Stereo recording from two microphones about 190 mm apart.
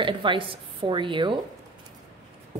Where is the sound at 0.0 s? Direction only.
25° right (ahead or behind).